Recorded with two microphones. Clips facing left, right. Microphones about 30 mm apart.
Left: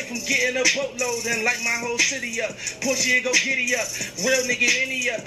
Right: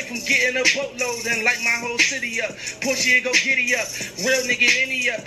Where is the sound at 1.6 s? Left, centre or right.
Right.